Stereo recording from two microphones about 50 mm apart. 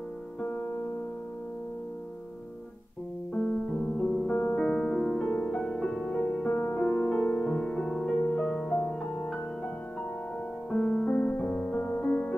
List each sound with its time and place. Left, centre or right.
0.4 s music: left
3.3 s piano: centre
4.3 s music: left
4.6 s music: left
6.2 s music: left; by 9.4 s centre
10.7 s music: centre